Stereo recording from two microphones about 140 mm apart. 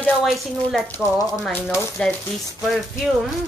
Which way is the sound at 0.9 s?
20° left (ahead or behind).